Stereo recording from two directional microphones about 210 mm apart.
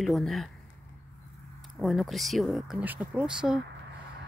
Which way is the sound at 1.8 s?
Centre (ahead or behind).